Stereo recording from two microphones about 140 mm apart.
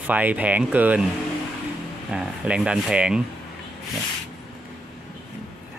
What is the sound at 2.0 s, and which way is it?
Speech, 5° right (ahead or behind).